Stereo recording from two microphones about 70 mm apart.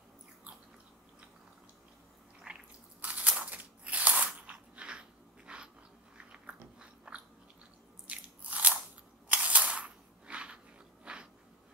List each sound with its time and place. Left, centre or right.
2.5 s squish: centre
3.0 s crunch: right
6.1 s biting: centre
9.3 s camera: centre
11.1 s a sound: centre